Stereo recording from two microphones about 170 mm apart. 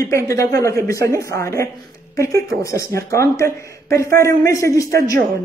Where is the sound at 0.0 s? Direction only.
20° left (ahead or behind).